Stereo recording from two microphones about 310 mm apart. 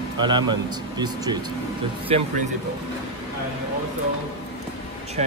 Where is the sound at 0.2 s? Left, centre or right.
Centre.